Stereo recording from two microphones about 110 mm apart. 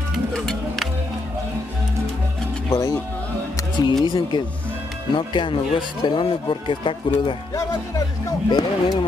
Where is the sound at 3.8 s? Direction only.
35° left (ahead or behind).